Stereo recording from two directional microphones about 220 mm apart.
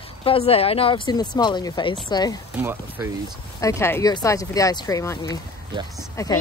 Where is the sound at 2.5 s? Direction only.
10° right (ahead or behind).